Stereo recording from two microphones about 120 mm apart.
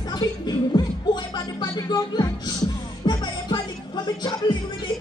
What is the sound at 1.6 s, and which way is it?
Music, 35° left (ahead or behind).